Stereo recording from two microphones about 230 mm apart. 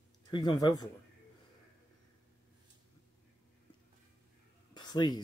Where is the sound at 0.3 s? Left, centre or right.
Centre.